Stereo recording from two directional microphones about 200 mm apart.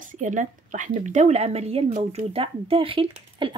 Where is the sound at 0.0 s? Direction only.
40° right (ahead or behind).